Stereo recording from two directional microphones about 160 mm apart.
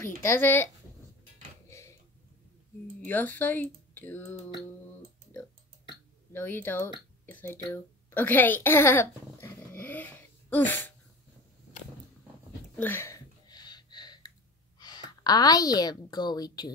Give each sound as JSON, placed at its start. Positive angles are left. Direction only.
{"t": 0.0, "sound": "speech", "side_deg": 15}
{"t": 3.1, "sound": "speech", "side_deg": 10}
{"t": 6.3, "sound": "a woman's voice", "side_deg": 10}
{"t": 12.7, "sound": "a sound", "side_deg": 15}
{"t": 14.8, "sound": "a woman's voice", "side_deg": 25}